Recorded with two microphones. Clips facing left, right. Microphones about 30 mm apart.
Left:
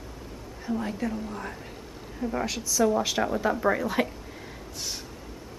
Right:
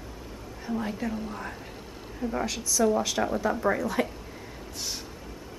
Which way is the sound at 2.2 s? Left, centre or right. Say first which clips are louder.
Left 1 dB; centre.